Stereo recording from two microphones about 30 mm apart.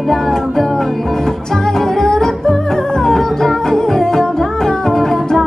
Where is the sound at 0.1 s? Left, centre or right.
Centre.